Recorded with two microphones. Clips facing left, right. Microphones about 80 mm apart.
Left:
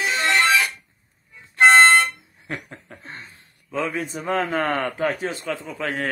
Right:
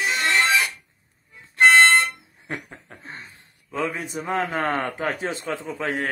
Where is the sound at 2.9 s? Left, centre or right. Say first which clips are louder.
Left 2 dB; centre.